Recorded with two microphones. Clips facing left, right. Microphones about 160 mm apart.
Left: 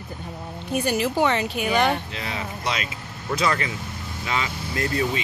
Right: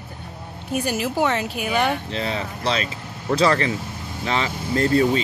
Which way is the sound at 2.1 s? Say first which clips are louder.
Right 5 dB; 30° right (ahead or behind).